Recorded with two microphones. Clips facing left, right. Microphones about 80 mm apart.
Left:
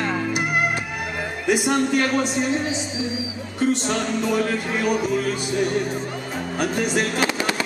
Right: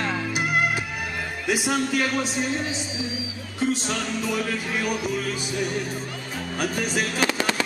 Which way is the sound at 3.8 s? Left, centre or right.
Centre.